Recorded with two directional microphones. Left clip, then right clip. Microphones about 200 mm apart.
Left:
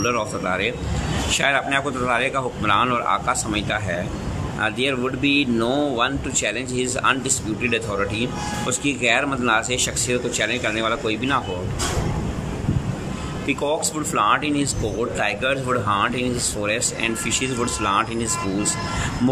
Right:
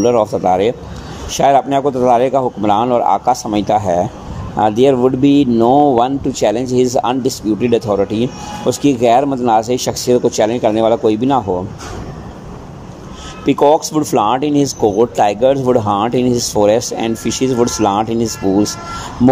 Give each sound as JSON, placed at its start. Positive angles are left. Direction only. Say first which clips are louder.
{"t": 0.0, "sound": "speech", "louder": "right 10 dB", "side_deg": -30}
{"t": 13.5, "sound": "speech", "louder": "right 12 dB", "side_deg": -30}